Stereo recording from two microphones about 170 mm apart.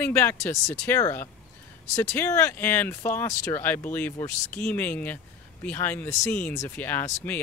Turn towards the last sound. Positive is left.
turn(degrees=10)  # may be behind; listen again after turning